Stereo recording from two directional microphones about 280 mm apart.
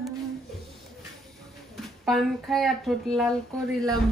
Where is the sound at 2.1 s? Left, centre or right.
Centre.